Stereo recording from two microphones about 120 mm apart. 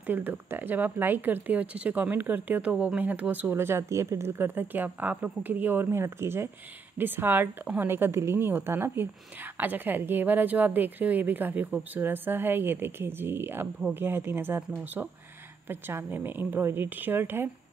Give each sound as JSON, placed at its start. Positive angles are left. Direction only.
{"t": 0.0, "sound": "a woman's voice", "side_deg": -15}